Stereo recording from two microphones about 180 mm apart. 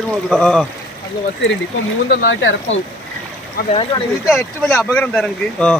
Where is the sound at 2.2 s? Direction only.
90° left.